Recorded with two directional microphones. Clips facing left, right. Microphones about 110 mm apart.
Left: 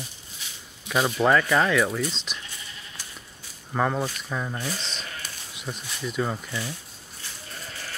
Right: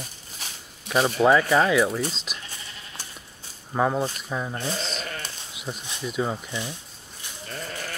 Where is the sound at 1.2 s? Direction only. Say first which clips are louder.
Right 2 dB; 10° right (ahead or behind).